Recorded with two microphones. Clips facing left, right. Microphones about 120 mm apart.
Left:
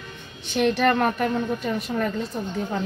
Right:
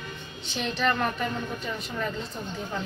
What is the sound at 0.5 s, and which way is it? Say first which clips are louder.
A woman's voice: left 7 dB; 55° left (ahead or behind).